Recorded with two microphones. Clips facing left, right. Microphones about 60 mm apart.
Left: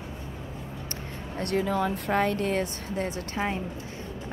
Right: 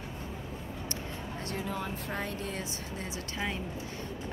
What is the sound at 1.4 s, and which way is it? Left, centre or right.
Speech, left.